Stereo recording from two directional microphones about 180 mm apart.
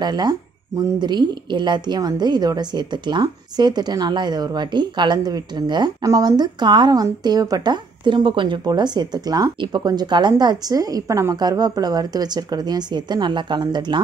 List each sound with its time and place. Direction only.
0.0 s a woman's voice: 25° right (ahead or behind)